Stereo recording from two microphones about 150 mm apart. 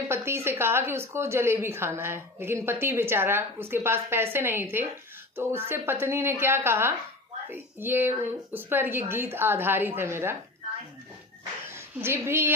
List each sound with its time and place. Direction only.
0.1 s a woman's voice: 15° right (ahead or behind)
12.0 s a woman's voice: 15° right (ahead or behind)